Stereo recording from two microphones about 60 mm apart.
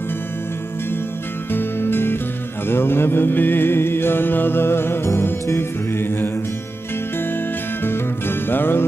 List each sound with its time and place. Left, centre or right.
1.5 s music: left
7.8 s music: left